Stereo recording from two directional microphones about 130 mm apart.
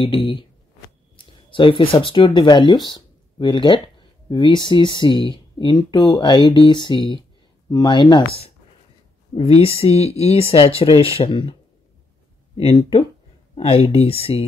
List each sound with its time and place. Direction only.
0.0 s speech: 40° left (ahead or behind)
12.5 s speech: 50° left (ahead or behind)